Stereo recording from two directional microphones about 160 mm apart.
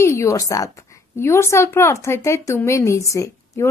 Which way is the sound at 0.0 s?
20° left (ahead or behind).